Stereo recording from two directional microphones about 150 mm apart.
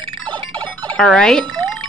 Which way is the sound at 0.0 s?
35° right (ahead or behind).